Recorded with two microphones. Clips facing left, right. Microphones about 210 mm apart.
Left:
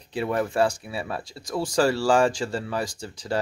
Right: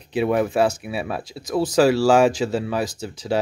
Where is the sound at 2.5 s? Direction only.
20° right (ahead or behind).